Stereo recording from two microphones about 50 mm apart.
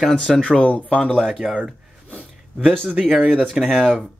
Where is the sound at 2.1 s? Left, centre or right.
Left.